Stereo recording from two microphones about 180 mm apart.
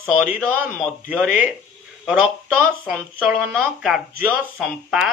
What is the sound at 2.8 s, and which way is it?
Speech, 5° right (ahead or behind).